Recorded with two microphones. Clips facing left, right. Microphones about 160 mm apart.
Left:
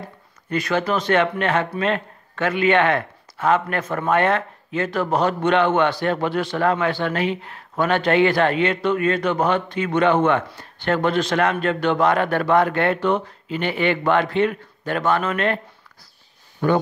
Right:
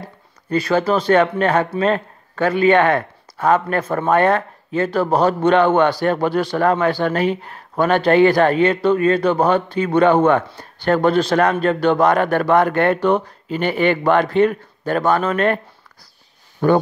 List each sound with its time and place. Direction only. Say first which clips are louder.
0.0 s a man's voice: right 1 dB; 35° right (ahead or behind)
16.6 s speech: right 4 dB; 40° right (ahead or behind)